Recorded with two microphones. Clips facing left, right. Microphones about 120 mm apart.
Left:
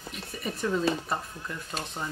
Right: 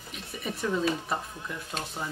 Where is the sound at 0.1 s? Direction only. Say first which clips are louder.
Even; centre (ahead or behind).